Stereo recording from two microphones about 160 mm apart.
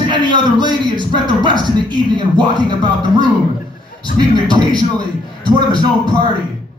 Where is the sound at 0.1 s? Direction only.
30° right (ahead or behind).